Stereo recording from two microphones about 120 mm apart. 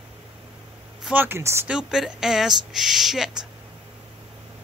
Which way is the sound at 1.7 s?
5° right (ahead or behind).